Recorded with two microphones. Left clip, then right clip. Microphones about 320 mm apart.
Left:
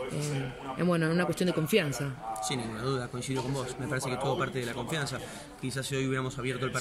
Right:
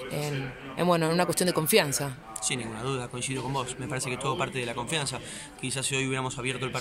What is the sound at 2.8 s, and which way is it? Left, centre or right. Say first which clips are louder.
Speech: right 1 dB; centre.